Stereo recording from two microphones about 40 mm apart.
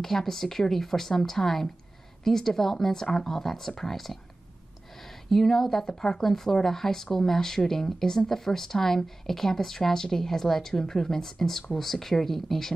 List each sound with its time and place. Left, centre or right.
0.0 s speech: centre